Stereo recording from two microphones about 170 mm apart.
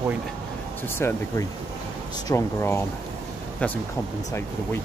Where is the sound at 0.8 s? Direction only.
15° left (ahead or behind).